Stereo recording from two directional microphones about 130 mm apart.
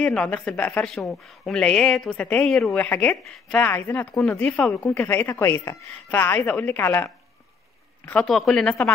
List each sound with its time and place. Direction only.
0.0 s a woman's voice: 10° left (ahead or behind)
8.3 s a woman's voice: centre (ahead or behind)